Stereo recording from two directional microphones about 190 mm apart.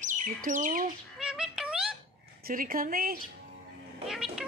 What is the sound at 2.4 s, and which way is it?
Speech, 50° right (ahead or behind).